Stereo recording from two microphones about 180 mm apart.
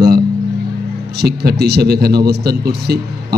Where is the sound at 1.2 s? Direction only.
60° right (ahead or behind).